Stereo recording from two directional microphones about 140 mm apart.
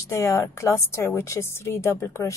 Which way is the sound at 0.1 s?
20° left (ahead or behind).